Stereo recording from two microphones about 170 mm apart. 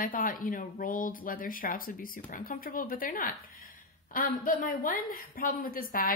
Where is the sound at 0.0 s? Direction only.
55° left (ahead or behind).